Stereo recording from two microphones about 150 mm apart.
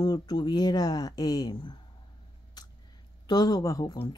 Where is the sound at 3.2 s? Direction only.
25° left (ahead or behind).